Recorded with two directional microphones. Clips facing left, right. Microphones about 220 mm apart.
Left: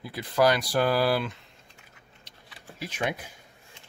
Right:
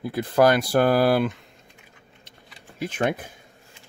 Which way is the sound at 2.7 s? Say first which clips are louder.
Right 6 dB; 50° right (ahead or behind).